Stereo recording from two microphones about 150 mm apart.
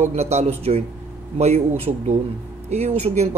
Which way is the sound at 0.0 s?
45° right (ahead or behind).